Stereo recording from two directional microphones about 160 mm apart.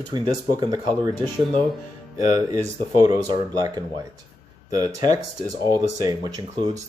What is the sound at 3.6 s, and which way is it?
Speech, 20° right (ahead or behind).